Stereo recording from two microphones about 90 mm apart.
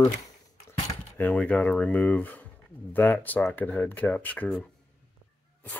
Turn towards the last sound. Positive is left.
turn(degrees=15)  # may be behind; listen again after turning